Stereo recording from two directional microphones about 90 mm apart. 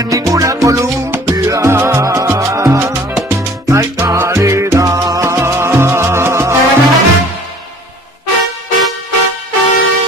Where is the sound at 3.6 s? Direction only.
35° right (ahead or behind).